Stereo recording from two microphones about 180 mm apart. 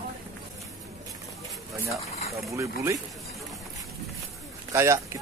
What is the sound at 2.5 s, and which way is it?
Speech, 15° right (ahead or behind).